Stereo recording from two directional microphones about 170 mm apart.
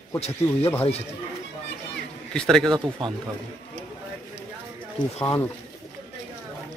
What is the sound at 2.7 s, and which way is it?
Speech, 25° right (ahead or behind).